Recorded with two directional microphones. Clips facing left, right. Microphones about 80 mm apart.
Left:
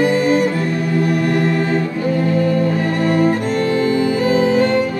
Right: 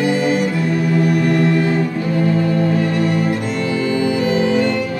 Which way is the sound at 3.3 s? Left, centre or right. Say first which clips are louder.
Left 3 dB; left.